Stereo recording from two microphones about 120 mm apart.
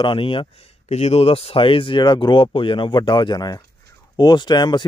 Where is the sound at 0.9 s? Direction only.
65° left (ahead or behind).